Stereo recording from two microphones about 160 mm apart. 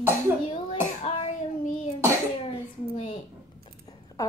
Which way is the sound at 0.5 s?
35° left (ahead or behind).